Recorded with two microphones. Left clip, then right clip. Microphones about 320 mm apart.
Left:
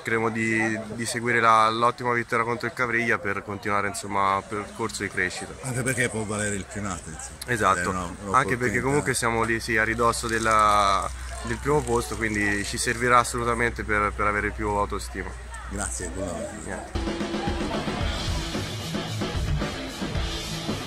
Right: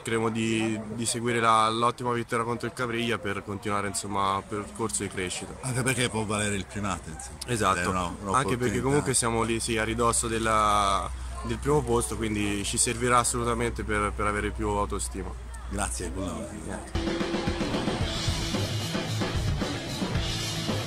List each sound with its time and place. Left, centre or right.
0.1 s speech: centre
0.5 s speech: right
1.1 s speech: centre
5.8 s speech: centre